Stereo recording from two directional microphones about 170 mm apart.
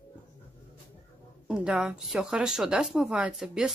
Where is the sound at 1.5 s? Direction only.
5° right (ahead or behind).